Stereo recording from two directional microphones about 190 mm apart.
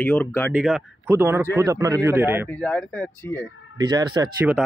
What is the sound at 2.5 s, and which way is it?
Speech, 5° left (ahead or behind).